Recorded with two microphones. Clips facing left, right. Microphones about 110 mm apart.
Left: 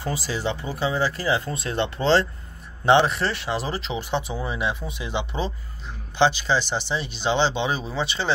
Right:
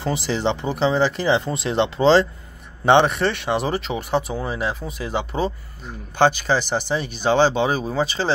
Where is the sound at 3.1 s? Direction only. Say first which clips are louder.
Right 4 dB; 60° right (ahead or behind).